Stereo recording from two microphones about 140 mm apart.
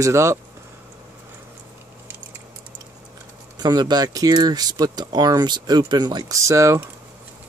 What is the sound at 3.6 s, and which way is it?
Speech, 30° right (ahead or behind).